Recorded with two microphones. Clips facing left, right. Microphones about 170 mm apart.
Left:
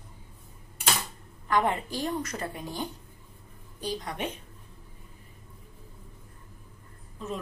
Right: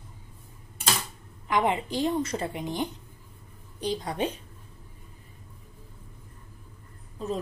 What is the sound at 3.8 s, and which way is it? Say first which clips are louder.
Speech: right 4 dB; 30° right (ahead or behind).